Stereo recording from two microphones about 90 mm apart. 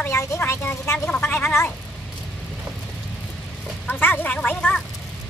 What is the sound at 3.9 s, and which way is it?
Speech, 20° left (ahead or behind).